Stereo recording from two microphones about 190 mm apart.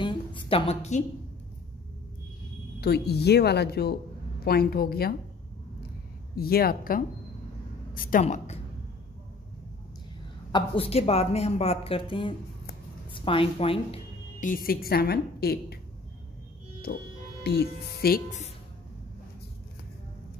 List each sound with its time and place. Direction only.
0.0 s a woman's voice: 25° left (ahead or behind)
2.8 s a woman's voice: 60° left (ahead or behind)
6.3 s a woman's voice: 55° left (ahead or behind)
10.5 s a woman's voice: 30° left (ahead or behind)
14.4 s a woman's voice: 45° left (ahead or behind)
16.8 s speech: 55° left (ahead or behind)